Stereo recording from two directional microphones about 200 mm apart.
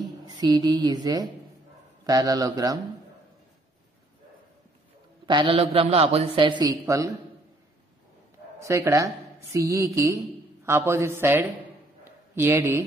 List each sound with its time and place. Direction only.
0.0 s a man's voice: 20° right (ahead or behind)
5.2 s a man's voice: 25° right (ahead or behind)
8.5 s a woman's voice: 15° right (ahead or behind)
12.0 s a sound: 10° right (ahead or behind)